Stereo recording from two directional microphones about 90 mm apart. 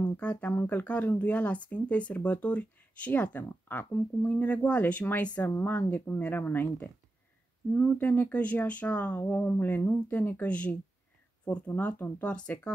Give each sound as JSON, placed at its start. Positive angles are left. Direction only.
{"t": 0.0, "sound": "speech", "side_deg": 15}